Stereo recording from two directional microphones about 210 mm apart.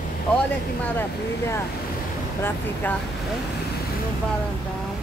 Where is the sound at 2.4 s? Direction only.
10° left (ahead or behind).